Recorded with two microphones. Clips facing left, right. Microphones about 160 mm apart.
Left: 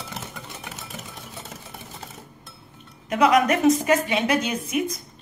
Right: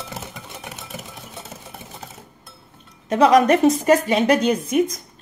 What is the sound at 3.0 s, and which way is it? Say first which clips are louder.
A woman's voice: right 4 dB; 30° right (ahead or behind).